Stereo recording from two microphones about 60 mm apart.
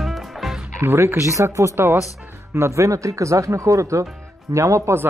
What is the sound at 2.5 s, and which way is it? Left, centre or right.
Speech, right.